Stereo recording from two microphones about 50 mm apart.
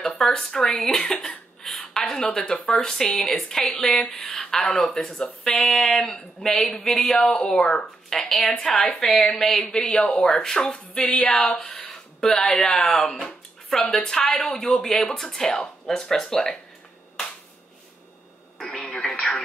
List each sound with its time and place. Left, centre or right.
0.0 s speech: centre
1.6 s a sound: centre
2.3 s speech: centre
3.6 s speech: left
4.1 s a sound: centre
4.9 s speech: centre
5.6 s a woman's voice: centre
9.7 s speech: centre
11.0 s speech: left
11.6 s a sound: centre
12.5 s speech: centre
18.6 s radio: centre